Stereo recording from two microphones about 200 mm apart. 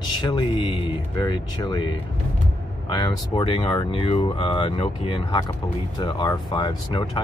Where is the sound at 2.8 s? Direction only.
25° left (ahead or behind).